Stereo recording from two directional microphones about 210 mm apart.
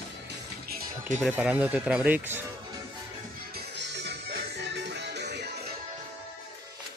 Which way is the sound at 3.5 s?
55° right (ahead or behind).